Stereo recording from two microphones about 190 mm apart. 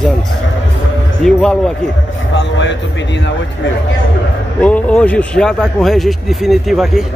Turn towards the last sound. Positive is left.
turn(degrees=0)  # may be behind; listen again after turning